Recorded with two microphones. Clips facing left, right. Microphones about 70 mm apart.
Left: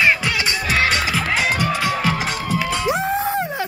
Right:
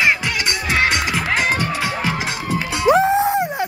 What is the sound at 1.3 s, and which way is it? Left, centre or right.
Music, right.